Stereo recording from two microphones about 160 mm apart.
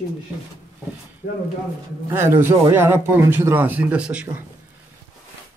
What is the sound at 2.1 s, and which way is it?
Speech, 15° right (ahead or behind).